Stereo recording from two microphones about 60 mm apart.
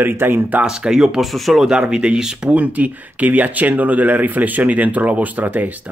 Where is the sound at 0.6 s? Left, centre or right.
Centre.